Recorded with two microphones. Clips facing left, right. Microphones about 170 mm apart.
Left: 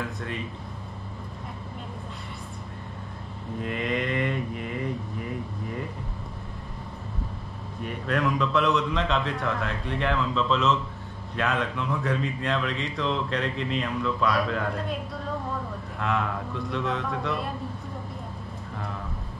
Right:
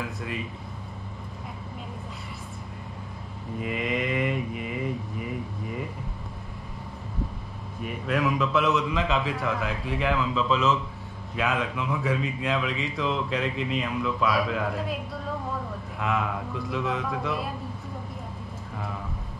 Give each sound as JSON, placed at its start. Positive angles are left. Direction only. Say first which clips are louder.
{"t": 0.0, "sound": "speech", "louder": "even", "side_deg": -5}
{"t": 3.5, "sound": "mantra", "louder": "even", "side_deg": -5}
{"t": 7.8, "sound": "speech", "louder": "even", "side_deg": -5}